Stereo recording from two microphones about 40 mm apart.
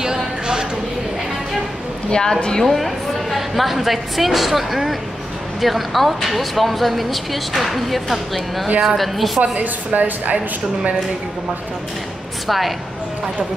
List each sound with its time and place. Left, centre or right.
0.0 s a sound: centre
2.0 s a woman's voice: left
2.6 s a woman's voice: centre
9.4 s speech: right
10.3 s speech: right
12.4 s speech: centre